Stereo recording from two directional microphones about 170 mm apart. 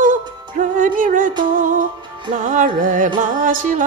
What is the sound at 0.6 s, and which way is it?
Music, 50° right (ahead or behind).